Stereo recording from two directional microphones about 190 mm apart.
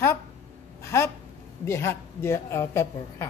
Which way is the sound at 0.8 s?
15° left (ahead or behind).